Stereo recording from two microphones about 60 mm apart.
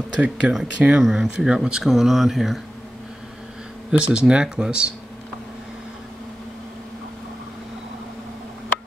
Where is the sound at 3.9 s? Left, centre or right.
Centre.